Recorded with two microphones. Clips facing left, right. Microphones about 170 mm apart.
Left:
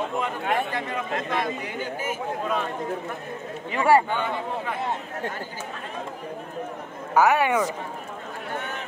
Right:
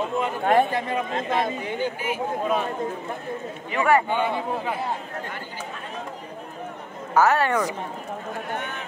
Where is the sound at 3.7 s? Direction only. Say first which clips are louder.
Left 1 dB; 30° left (ahead or behind).